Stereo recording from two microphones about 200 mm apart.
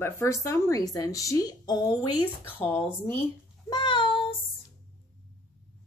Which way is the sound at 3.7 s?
25° left (ahead or behind).